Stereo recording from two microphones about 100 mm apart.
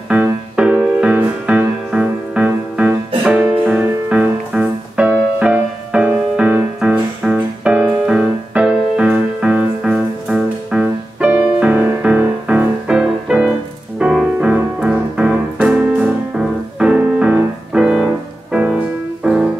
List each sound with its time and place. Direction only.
0.1 s music: 15° right (ahead or behind)
11.6 s music: 20° right (ahead or behind)